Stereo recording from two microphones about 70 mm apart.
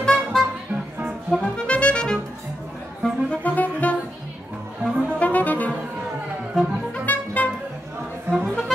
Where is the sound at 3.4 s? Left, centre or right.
Left.